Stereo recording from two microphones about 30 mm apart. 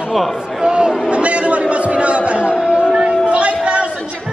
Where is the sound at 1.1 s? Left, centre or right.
Right.